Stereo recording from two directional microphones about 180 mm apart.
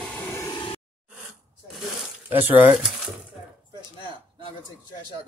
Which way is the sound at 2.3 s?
10° right (ahead or behind).